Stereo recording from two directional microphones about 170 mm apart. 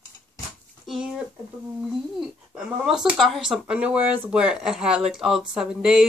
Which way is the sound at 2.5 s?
5° right (ahead or behind).